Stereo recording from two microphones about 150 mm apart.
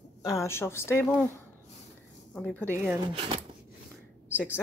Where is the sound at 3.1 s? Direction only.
35° right (ahead or behind).